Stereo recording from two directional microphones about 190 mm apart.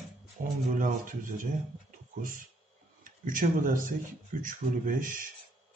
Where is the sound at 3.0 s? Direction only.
45° right (ahead or behind).